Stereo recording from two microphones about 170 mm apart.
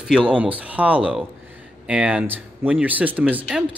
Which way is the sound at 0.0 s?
5° right (ahead or behind).